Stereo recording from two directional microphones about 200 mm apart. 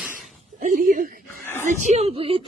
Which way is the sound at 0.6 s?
45° right (ahead or behind).